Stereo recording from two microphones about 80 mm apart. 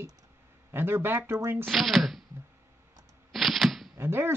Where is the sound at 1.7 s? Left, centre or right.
Centre.